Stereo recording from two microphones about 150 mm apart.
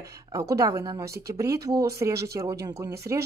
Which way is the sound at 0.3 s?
20° right (ahead or behind).